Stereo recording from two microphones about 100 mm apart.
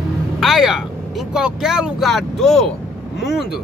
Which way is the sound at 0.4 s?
Centre (ahead or behind).